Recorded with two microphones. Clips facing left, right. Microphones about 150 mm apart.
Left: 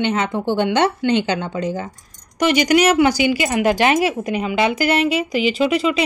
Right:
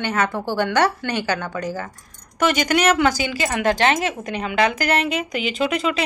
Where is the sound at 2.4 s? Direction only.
45° right (ahead or behind).